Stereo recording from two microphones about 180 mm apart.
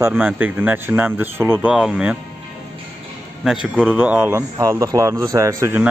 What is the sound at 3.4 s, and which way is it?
A man's voice, centre (ahead or behind).